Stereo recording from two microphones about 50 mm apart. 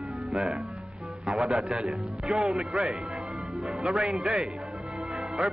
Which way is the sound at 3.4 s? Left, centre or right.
Centre.